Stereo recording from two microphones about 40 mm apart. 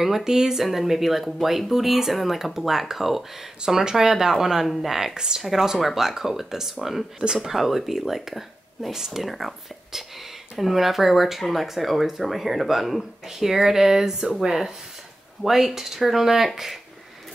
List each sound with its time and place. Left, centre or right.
0.0 s speech: centre
5.1 s speech: centre